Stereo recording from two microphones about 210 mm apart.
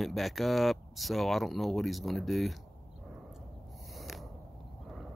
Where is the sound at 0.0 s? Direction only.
Centre (ahead or behind).